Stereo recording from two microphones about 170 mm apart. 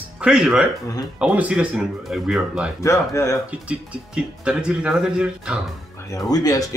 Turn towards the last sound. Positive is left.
turn(degrees=20)  # may be behind; listen again after turning